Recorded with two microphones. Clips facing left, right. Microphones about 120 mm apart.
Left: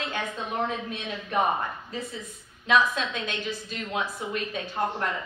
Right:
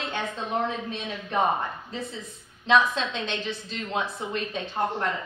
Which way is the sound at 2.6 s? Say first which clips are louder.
Right 1 dB; 25° right (ahead or behind).